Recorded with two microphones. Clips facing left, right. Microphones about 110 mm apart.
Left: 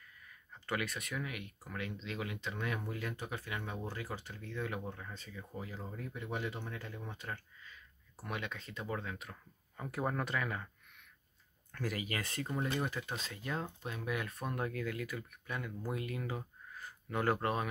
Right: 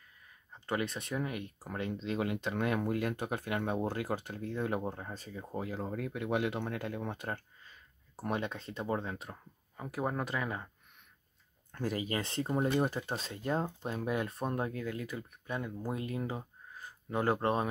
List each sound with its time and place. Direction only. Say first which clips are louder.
0.3 s speech: right 3 dB; 25° right (ahead or behind); by 5.6 s 40° right (ahead or behind)
5.6 s speech: right 8 dB; 60° right (ahead or behind); by 9.4 s 30° right (ahead or behind)
9.8 s speech: right 2 dB; 10° right (ahead or behind)
11.7 s speech: right 4 dB; 25° right (ahead or behind)